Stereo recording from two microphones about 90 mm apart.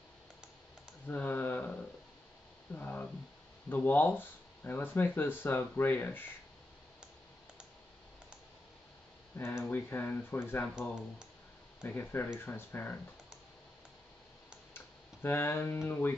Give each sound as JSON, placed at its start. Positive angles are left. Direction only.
{"t": 1.0, "sound": "computer keyboard", "side_deg": 20}
{"t": 2.7, "sound": "a sound", "side_deg": 20}
{"t": 3.6, "sound": "speech", "side_deg": 20}
{"t": 9.4, "sound": "speech", "side_deg": 25}
{"t": 11.8, "sound": "speech", "side_deg": 25}
{"t": 15.2, "sound": "speech", "side_deg": 25}